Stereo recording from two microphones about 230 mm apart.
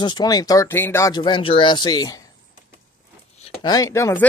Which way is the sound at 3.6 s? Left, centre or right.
Centre.